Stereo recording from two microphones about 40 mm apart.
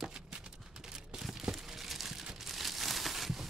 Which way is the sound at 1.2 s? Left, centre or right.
Centre.